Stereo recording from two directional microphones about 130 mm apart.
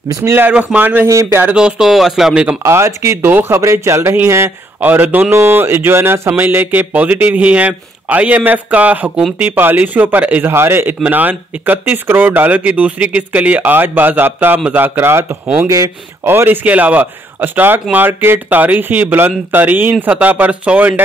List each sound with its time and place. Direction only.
0.1 s speech: 20° right (ahead or behind)
1.5 s speech: 5° right (ahead or behind)
2.6 s speech: 20° right (ahead or behind)